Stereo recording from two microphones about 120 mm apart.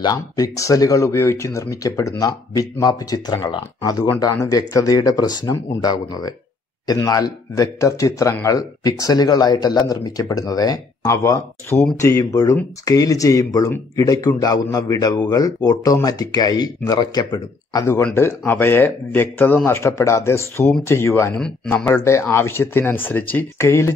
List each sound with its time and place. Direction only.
0.0 s speech: 30° left (ahead or behind)